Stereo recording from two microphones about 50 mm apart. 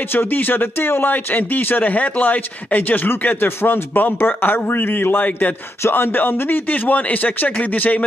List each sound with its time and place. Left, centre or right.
0.1 s speech: left